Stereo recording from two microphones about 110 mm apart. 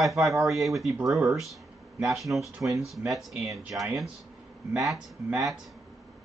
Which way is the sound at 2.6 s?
20° right (ahead or behind).